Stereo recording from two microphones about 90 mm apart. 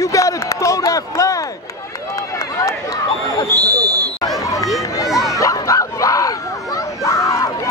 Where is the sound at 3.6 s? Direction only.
40° right (ahead or behind).